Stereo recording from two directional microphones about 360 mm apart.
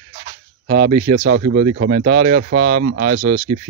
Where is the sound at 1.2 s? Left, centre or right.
Right.